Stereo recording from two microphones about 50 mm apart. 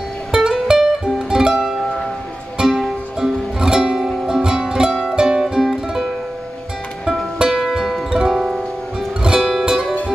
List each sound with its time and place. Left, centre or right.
0.3 s music: centre
3.6 s music: centre
5.4 s music: centre
7.3 s music: centre
9.2 s music: centre